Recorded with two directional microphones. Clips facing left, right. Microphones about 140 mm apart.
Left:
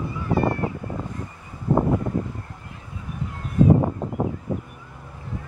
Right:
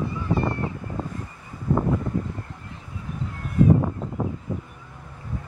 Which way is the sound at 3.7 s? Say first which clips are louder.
Left 2 dB; 60° left (ahead or behind).